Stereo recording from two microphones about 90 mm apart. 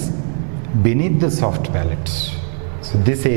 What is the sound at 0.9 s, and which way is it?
Speech, 15° right (ahead or behind).